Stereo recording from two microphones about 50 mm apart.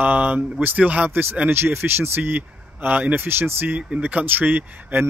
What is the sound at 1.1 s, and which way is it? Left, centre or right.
Speech, right.